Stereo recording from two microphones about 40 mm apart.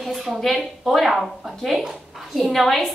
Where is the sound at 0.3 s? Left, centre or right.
Centre.